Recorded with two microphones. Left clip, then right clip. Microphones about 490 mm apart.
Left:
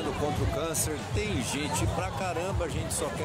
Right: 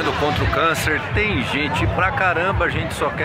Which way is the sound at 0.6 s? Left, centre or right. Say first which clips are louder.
Right 14 dB; left.